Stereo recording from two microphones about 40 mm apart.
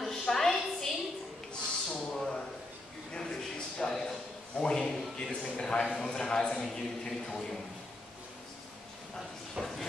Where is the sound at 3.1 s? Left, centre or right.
Centre.